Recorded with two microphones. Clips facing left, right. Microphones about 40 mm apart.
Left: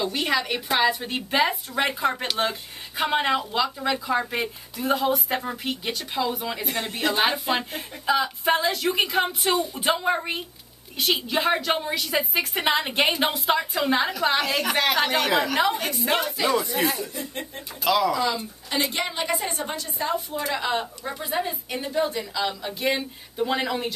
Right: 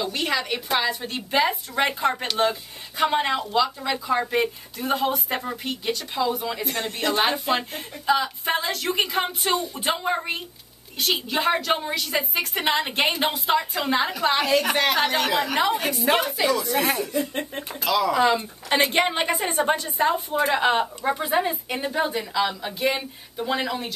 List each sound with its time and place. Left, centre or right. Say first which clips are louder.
0.0 s speech: left 1 dB; centre
16.4 s speech: even; left
16.8 s speech: right 1 dB; right
17.8 s speech: left 1 dB; centre
18.1 s a woman's voice: right 5 dB; right; by 22.8 s centre
22.8 s speech: even; centre